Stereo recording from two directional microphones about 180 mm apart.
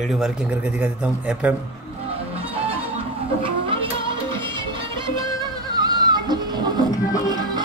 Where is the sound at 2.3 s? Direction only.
35° right (ahead or behind).